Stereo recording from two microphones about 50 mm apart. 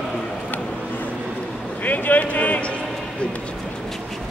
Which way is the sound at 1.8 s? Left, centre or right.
Left.